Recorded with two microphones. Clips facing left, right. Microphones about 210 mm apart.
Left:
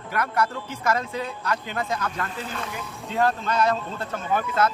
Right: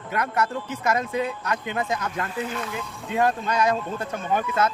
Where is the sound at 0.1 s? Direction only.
20° right (ahead or behind).